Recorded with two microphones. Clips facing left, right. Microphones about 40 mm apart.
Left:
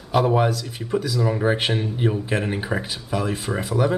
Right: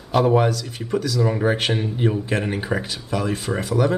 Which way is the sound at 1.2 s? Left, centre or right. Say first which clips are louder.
Right 1 dB; centre.